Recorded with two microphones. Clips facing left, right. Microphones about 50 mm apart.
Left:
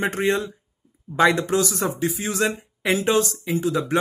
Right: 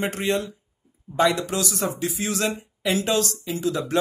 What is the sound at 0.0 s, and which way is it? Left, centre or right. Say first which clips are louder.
Speech: left 2 dB; left.